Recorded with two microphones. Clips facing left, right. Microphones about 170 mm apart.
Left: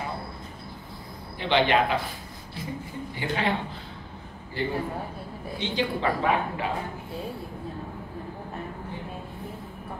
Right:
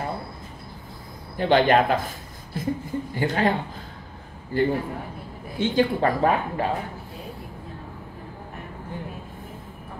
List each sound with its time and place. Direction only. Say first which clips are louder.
1.3 s a man's voice: right 5 dB; 45° right (ahead or behind)
4.5 s a man's voice: right 6 dB; 50° right (ahead or behind)